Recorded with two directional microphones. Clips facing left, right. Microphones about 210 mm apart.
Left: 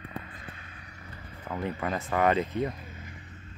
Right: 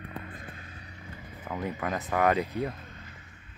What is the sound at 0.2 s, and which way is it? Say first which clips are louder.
Vehicle: right 3 dB; 45° right (ahead or behind).